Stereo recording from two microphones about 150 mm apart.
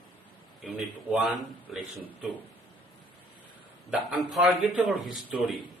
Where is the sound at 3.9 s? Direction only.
5° right (ahead or behind).